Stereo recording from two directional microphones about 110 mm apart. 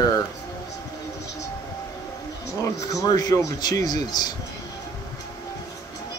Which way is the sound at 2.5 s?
30° left (ahead or behind).